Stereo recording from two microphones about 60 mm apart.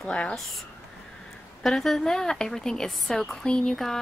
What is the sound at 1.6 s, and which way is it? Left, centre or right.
A woman's voice, centre.